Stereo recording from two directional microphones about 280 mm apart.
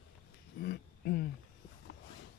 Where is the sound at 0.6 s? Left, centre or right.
Left.